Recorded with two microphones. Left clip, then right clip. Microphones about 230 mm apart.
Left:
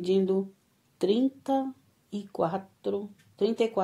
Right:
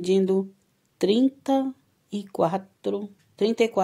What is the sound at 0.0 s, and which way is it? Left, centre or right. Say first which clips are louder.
Speech: right 4 dB; right.